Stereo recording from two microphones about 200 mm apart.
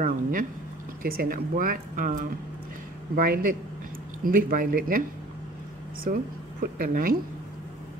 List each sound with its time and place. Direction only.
0.0 s speech: 45° right (ahead or behind)
6.1 s speech: 45° right (ahead or behind)